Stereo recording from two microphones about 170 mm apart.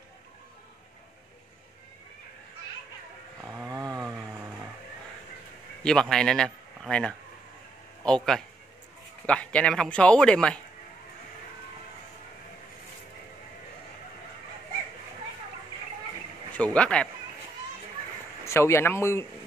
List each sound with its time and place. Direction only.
3.6 s chainsaw: 20° right (ahead or behind)
5.8 s a man's voice: 5° left (ahead or behind)
16.5 s speech: 5° left (ahead or behind)
18.4 s speech: 15° left (ahead or behind)